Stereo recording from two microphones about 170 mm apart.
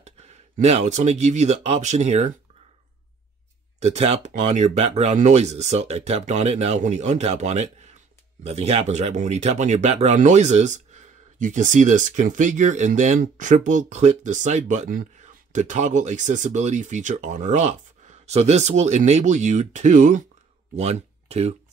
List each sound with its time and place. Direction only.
0.0 s speech: 40° right (ahead or behind)
3.8 s speech: 40° right (ahead or behind)